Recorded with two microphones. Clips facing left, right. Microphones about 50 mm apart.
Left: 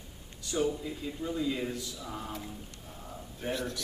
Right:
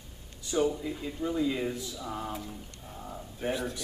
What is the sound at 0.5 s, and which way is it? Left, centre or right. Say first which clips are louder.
A man's voice: right 3 dB; centre.